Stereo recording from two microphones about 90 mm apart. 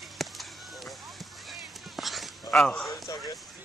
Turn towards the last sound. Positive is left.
turn(degrees=40)  # may be behind; listen again after turning